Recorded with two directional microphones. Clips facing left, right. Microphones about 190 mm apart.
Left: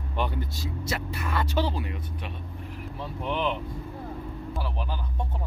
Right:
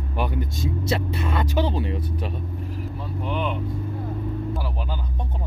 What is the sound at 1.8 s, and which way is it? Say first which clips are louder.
Speech: right 7 dB; 30° right (ahead or behind).